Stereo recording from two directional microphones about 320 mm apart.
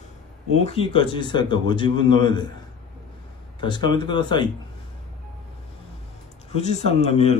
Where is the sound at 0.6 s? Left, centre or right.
Centre.